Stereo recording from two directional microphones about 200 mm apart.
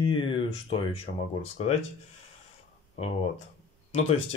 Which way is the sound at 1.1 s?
40° left (ahead or behind).